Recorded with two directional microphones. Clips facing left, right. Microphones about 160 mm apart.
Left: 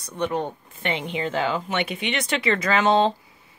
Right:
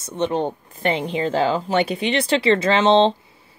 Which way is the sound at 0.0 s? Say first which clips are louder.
Right 4 dB; 25° right (ahead or behind).